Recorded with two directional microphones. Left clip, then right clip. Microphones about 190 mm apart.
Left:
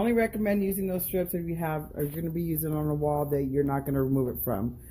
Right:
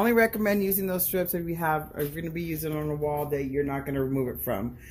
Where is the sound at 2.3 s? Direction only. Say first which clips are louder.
Even; 15° left (ahead or behind).